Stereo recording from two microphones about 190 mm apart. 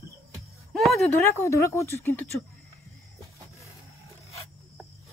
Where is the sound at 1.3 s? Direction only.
15° left (ahead or behind).